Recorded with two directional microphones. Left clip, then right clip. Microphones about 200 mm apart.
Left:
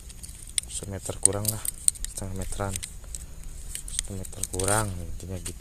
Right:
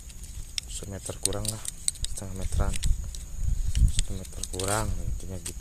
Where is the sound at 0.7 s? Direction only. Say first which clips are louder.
Left 3 dB; 20° left (ahead or behind).